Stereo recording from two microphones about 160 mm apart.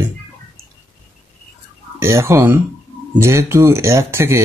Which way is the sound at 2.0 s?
15° right (ahead or behind).